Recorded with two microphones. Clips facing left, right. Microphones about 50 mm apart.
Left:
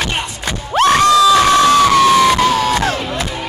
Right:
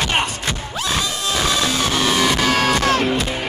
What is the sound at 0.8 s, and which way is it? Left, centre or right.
Crowd, left.